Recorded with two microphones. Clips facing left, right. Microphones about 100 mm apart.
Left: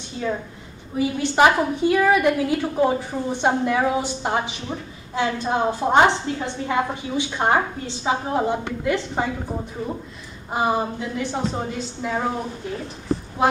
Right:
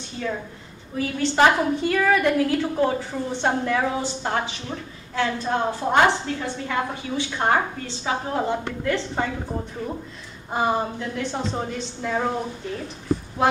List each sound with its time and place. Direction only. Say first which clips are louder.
0.9 s a woman's voice: left 2 dB; 15° left (ahead or behind)
10.5 s a woman's voice: left 1 dB; 5° left (ahead or behind)